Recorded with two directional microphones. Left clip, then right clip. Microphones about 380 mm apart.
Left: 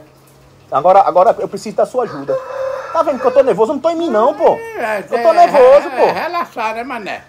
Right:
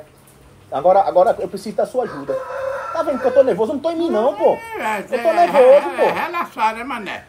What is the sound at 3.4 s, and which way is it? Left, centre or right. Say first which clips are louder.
Speech: left 5 dB; left.